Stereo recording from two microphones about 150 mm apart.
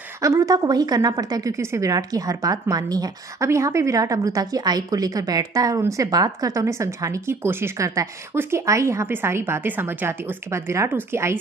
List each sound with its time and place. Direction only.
0.2 s a woman's voice: 20° right (ahead or behind)